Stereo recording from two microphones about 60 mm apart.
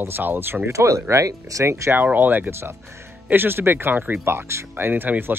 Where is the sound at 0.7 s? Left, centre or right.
Right.